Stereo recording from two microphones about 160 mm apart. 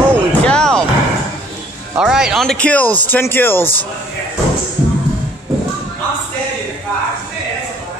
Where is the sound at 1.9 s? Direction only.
5° right (ahead or behind); by 3.8 s 15° left (ahead or behind).